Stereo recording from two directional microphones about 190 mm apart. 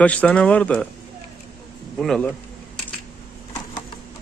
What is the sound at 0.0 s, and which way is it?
Speech, 5° left (ahead or behind).